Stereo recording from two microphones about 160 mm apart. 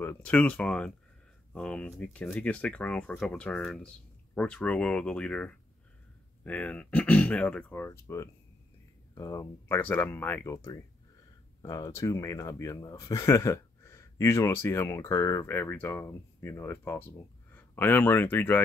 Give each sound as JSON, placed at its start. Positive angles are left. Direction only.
{"t": 0.0, "sound": "speech", "side_deg": 10}